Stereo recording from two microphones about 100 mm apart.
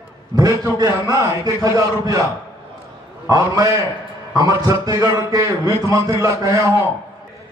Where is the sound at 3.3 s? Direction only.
40° right (ahead or behind).